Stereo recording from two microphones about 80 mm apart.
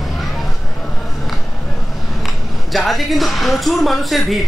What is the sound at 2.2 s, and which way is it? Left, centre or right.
Speech, centre.